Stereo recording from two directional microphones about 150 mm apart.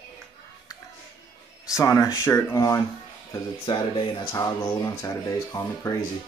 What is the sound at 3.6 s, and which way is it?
Speech, 35° left (ahead or behind).